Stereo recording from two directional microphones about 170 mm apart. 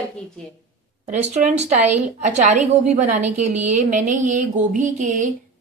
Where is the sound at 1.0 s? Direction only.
40° right (ahead or behind).